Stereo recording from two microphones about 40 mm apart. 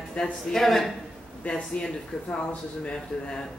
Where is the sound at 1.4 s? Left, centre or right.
Left.